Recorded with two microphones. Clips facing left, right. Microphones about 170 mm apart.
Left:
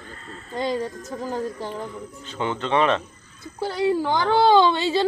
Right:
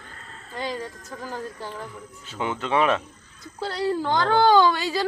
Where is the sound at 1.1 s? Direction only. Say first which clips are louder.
Left 6 dB; 15° left (ahead or behind).